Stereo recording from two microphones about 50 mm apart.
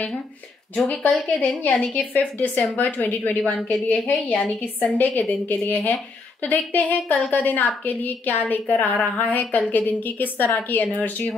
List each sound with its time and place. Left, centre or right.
0.8 s a woman's voice: left
2.3 s a woman's voice: left